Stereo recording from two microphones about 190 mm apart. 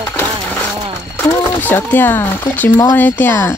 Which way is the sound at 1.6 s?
10° left (ahead or behind).